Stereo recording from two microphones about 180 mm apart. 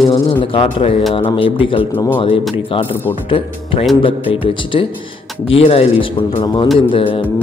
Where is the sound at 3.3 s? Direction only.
30° left (ahead or behind).